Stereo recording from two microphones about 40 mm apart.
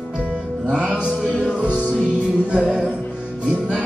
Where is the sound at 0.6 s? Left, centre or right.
Right.